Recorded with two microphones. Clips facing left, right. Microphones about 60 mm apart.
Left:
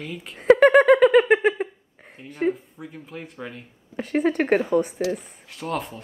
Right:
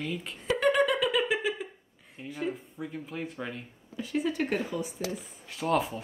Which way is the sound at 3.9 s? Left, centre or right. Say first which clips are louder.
Left 8 dB; left.